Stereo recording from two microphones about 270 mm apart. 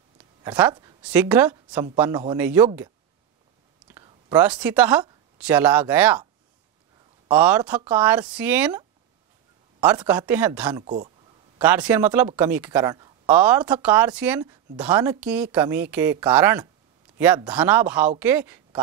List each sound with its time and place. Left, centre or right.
0.4 s speech: centre
3.8 s whispering: centre
5.4 s speech: centre
7.2 s speech: centre
10.8 s speech: right
11.6 s speech: centre